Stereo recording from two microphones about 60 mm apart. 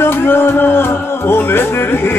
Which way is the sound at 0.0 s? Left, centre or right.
Left.